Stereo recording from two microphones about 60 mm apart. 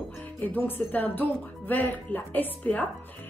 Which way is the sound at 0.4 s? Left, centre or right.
Left.